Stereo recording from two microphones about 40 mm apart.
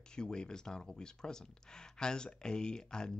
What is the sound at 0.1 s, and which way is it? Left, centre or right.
Speech, centre.